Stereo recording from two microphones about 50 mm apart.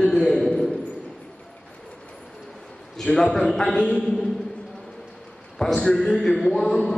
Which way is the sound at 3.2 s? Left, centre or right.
Centre.